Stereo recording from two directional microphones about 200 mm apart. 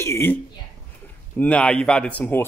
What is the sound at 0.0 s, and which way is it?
Speech, 10° left (ahead or behind).